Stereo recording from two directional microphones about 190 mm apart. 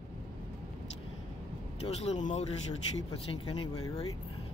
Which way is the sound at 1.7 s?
35° left (ahead or behind).